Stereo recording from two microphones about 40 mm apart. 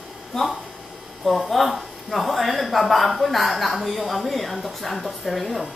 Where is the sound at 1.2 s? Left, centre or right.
Centre.